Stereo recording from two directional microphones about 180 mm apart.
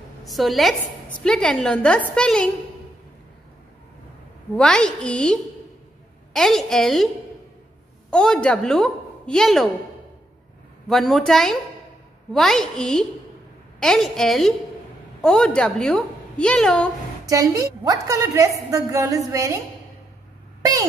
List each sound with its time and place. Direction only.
0.2 s a woman's voice: centre (ahead or behind)
4.6 s a woman's voice: 5° left (ahead or behind)
8.1 s a woman's voice: 5° left (ahead or behind)
10.9 s a woman's voice: centre (ahead or behind)
17.3 s a woman's voice: 20° right (ahead or behind)